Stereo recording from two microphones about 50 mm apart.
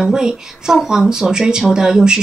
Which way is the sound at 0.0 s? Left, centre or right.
Centre.